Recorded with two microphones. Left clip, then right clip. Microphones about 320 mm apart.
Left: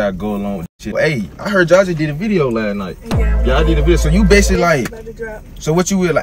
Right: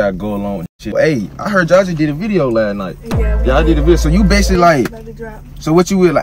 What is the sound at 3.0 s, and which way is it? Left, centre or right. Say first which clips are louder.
Music: right 1 dB; centre.